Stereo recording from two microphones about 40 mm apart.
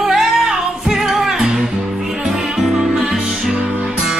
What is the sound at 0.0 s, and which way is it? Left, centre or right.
Music, centre.